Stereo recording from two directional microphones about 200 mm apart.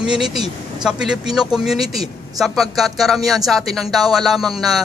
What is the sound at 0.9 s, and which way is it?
Speech, 5° right (ahead or behind).